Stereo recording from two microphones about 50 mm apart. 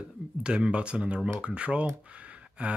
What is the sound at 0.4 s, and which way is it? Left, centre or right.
Speech, right.